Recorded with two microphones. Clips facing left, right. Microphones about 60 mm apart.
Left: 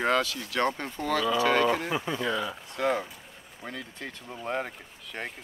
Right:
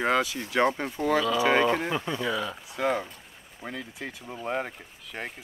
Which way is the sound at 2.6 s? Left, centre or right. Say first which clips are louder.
Even; centre.